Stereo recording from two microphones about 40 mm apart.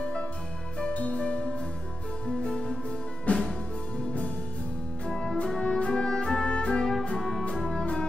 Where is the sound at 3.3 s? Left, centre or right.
Left.